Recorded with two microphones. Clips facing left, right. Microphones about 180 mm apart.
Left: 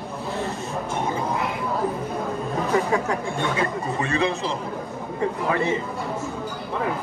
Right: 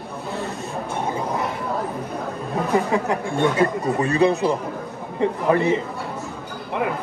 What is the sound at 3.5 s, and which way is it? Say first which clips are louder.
Speech: right 5 dB; 35° right (ahead or behind).